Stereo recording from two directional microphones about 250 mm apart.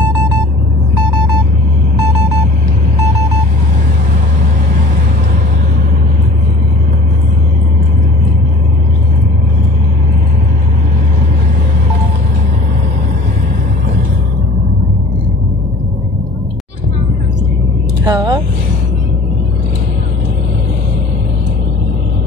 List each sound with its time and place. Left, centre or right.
18.0 s vehicle: centre